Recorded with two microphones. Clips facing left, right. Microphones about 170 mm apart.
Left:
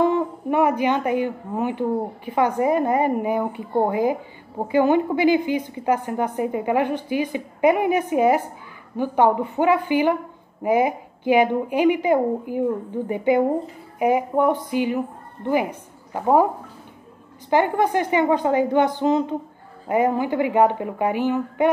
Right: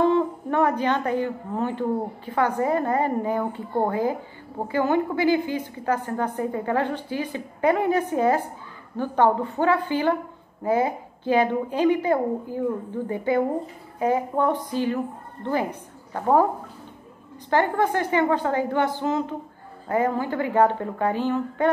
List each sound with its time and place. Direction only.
0.0 s a woman's voice: 15° left (ahead or behind)
17.5 s a woman's voice: 15° left (ahead or behind)